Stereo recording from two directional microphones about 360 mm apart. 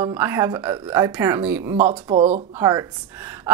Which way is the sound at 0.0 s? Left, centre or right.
Centre.